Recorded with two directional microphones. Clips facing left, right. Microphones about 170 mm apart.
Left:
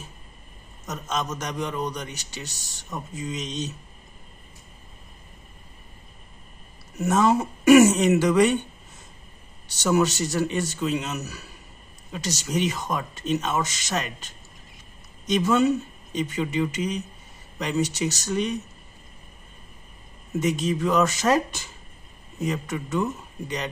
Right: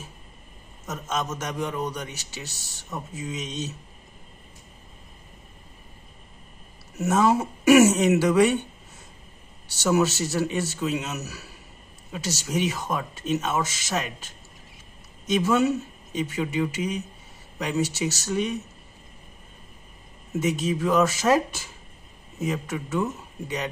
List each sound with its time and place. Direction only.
0.8 s a man's voice: 5° right (ahead or behind)
7.0 s speech: 5° right (ahead or behind)
9.7 s a man's voice: 5° right (ahead or behind)
20.3 s a man's voice: 5° right (ahead or behind)